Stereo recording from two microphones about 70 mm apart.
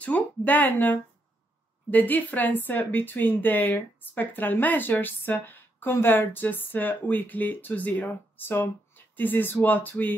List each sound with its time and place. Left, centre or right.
0.0 s speech: left